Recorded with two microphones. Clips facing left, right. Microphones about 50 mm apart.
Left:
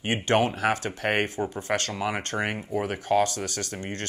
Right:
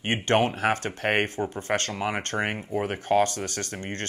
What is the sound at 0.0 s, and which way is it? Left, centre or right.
Speech, right.